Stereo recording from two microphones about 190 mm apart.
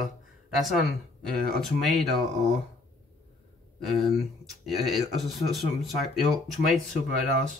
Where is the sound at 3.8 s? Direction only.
Centre (ahead or behind).